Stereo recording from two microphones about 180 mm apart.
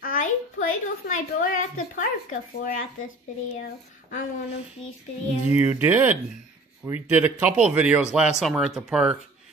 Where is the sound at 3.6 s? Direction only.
55° left (ahead or behind).